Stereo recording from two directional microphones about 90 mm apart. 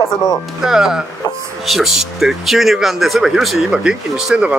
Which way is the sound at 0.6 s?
5° right (ahead or behind).